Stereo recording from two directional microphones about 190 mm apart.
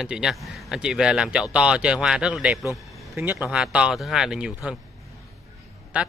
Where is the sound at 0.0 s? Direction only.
5° right (ahead or behind).